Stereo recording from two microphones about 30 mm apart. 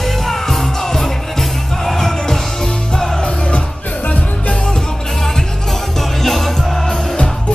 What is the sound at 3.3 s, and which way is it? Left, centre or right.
Music, left.